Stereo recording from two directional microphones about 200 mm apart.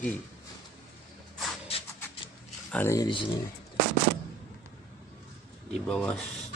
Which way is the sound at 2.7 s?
10° left (ahead or behind).